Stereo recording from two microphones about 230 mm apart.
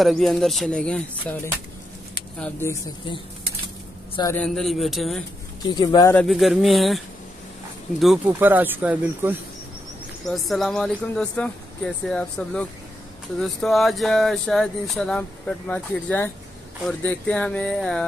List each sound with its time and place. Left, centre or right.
0.0 s a man's voice: centre
4.4 s speech: centre
5.8 s speech: centre
6.1 s speech: centre
8.0 s speech: centre